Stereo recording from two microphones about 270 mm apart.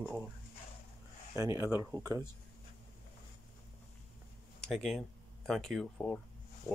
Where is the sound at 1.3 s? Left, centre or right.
Centre.